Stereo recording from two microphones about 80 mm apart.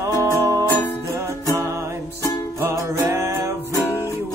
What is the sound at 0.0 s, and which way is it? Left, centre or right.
Music, right.